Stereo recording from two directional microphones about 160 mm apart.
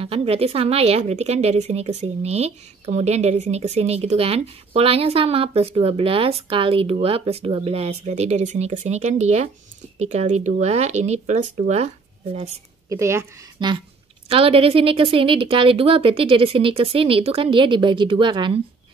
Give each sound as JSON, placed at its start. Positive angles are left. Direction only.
{"t": 0.0, "sound": "a woman's voice", "side_deg": -35}
{"t": 12.9, "sound": "speech", "side_deg": -20}
{"t": 14.3, "sound": "a woman's voice", "side_deg": -35}